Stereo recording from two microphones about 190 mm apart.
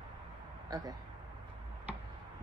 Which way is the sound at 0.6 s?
20° right (ahead or behind).